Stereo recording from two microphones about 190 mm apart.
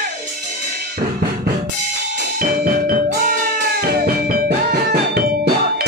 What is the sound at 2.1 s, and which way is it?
Music, 50° right (ahead or behind).